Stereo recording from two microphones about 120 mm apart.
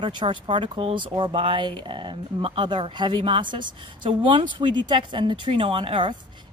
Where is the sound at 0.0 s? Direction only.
40° right (ahead or behind).